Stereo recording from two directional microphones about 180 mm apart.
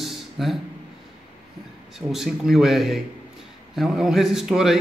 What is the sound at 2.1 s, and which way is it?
A man's voice, centre (ahead or behind).